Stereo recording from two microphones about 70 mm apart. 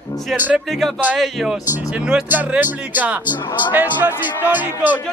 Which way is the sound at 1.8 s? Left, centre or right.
Centre.